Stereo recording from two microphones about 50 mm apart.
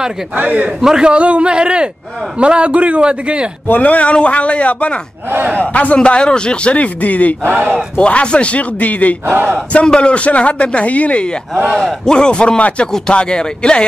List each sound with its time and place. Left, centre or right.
0.4 s speech: right
0.7 s a man's voice: centre
3.6 s speech: left
5.3 s speech: right
5.6 s speech: left
9.8 s speech: centre
11.7 s speech: centre